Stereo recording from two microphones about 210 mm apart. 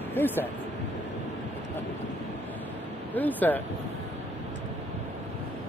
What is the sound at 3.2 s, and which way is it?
Speech, 10° left (ahead or behind).